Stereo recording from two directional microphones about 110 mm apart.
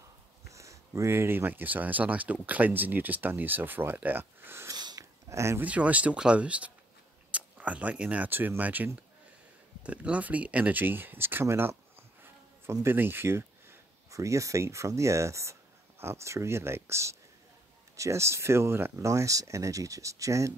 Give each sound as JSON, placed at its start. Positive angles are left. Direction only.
{"t": 0.5, "sound": "speech", "side_deg": -30}
{"t": 4.7, "sound": "sniff", "side_deg": -40}
{"t": 5.3, "sound": "speech", "side_deg": -25}
{"t": 5.7, "sound": "speech", "side_deg": -15}